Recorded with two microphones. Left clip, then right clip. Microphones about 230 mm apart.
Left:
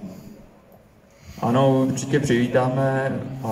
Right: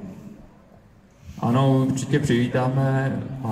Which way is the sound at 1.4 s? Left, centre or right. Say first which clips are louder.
Left 3 dB; right.